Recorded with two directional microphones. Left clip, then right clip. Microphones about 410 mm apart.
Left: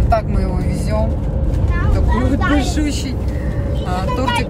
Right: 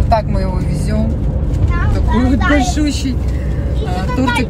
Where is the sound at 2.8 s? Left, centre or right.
Centre.